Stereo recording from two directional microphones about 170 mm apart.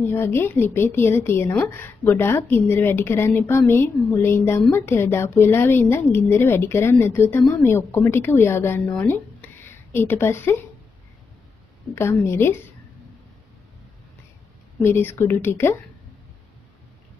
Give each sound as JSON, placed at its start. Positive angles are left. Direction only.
{"t": 0.0, "sound": "a woman's voice", "side_deg": 15}
{"t": 11.9, "sound": "a woman's voice", "side_deg": 15}
{"t": 14.8, "sound": "a woman's voice", "side_deg": 15}